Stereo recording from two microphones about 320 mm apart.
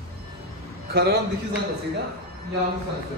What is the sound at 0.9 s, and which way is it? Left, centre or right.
Speech, right.